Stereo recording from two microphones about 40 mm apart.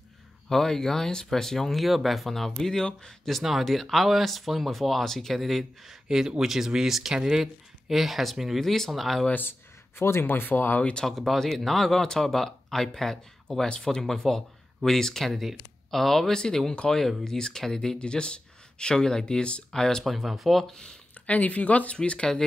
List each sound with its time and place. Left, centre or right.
0.5 s speech: centre
5.9 s speech: centre
9.3 s speech: left
10.8 s speech: left
11.1 s speech: centre
17.9 s speech: left
19.7 s speech: centre
20.1 s speech: centre
21.3 s speech: left
21.9 s speech: left